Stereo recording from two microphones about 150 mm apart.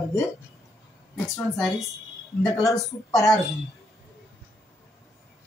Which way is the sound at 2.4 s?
Centre (ahead or behind).